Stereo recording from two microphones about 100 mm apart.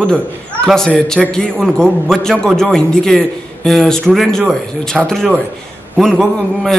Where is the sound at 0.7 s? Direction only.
5° left (ahead or behind).